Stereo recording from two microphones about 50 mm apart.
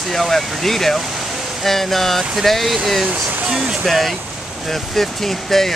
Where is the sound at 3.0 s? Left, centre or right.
Right.